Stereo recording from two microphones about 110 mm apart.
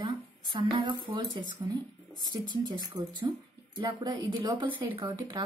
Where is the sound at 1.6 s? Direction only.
25° right (ahead or behind).